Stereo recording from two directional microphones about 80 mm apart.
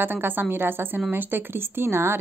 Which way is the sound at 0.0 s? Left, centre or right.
Right.